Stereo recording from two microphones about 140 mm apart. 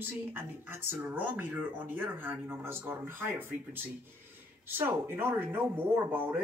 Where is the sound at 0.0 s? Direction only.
15° right (ahead or behind).